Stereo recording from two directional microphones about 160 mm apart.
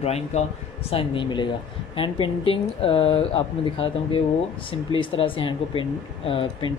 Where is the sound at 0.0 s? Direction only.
40° left (ahead or behind).